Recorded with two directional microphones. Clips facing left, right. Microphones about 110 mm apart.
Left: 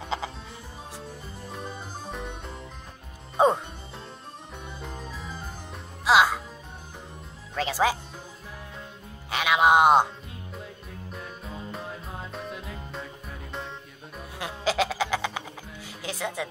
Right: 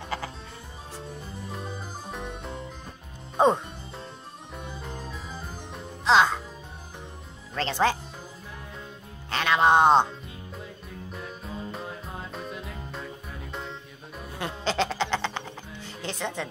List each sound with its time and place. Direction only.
1.5 s music: centre (ahead or behind)
7.5 s music: 10° left (ahead or behind)
9.3 s music: 10° left (ahead or behind)
10.6 s music: centre (ahead or behind)